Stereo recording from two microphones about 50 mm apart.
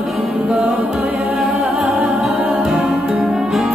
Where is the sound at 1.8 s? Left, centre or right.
Centre.